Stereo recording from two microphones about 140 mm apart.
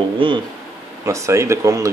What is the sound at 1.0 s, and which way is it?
Speech, 20° right (ahead or behind).